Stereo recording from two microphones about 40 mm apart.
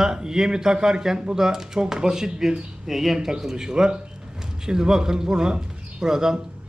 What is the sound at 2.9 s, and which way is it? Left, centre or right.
Speech, centre.